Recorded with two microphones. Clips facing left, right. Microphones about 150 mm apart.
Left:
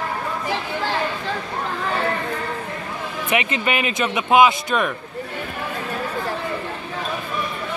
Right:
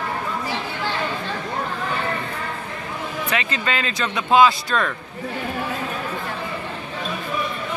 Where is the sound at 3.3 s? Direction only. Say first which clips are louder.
Left 4 dB; 15° left (ahead or behind).